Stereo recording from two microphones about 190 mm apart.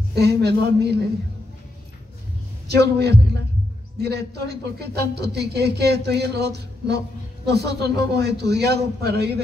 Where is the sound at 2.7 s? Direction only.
60° right (ahead or behind).